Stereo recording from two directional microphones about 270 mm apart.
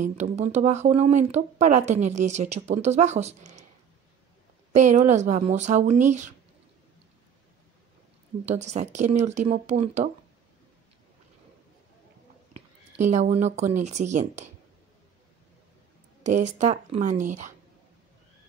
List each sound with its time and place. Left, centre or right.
0.0 s speech: right
4.7 s speech: right
8.5 s speech: right
12.9 s speech: right
16.2 s speech: right